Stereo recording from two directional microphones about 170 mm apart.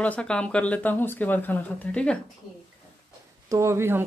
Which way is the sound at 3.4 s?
15° right (ahead or behind).